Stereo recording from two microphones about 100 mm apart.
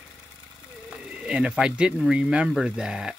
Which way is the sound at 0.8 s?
10° right (ahead or behind).